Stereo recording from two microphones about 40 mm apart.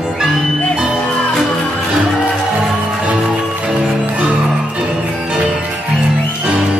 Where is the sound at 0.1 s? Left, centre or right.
Centre.